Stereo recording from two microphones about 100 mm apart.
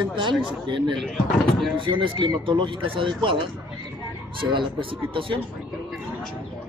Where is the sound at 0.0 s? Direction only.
50° right (ahead or behind).